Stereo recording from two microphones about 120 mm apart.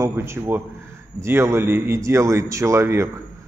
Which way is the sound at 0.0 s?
20° right (ahead or behind).